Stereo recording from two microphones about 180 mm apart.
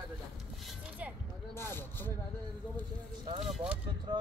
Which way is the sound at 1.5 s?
15° left (ahead or behind).